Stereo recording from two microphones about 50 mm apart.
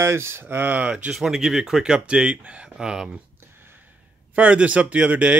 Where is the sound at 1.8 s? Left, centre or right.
Centre.